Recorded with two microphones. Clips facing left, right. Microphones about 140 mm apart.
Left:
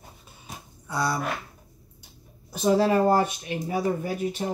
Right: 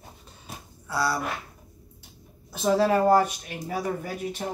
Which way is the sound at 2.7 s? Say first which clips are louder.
Right 1 dB; 20° left (ahead or behind).